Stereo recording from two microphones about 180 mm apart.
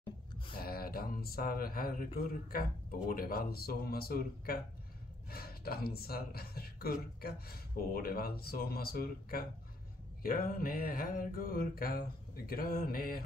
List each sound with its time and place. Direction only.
0.6 s speech: 55° left (ahead or behind)
10.2 s mantra: 55° left (ahead or behind)